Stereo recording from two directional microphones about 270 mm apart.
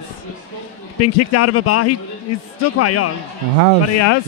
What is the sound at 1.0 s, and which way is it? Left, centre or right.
A man's voice, left.